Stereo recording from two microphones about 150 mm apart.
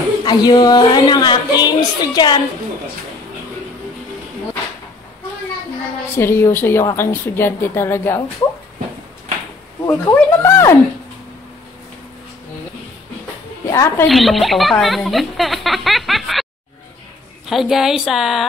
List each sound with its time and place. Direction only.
0.2 s a woman's voice: 25° left (ahead or behind)
6.1 s a woman's voice: 15° left (ahead or behind)
9.8 s a woman's voice: 15° left (ahead or behind)
13.7 s a woman's voice: 20° left (ahead or behind)
14.0 s speech: centre (ahead or behind)
17.5 s speech: centre (ahead or behind)